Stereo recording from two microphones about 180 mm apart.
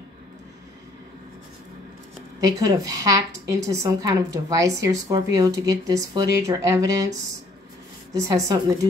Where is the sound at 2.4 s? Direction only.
20° right (ahead or behind).